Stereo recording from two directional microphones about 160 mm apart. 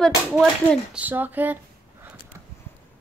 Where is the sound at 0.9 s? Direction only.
10° right (ahead or behind).